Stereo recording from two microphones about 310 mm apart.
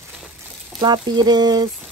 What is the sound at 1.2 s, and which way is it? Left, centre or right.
Speech, centre.